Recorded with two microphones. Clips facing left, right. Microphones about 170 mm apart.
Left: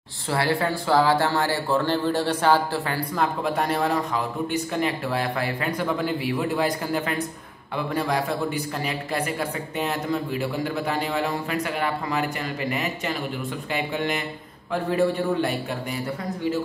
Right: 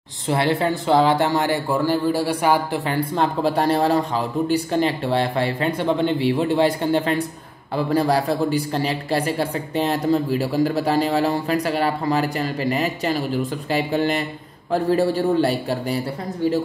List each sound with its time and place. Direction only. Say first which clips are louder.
0.3 s a man's voice: right 4 dB; 20° right (ahead or behind)
3.2 s a man's voice: right 4 dB; 30° right (ahead or behind)